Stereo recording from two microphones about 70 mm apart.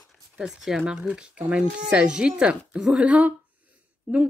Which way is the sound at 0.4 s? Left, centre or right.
Centre.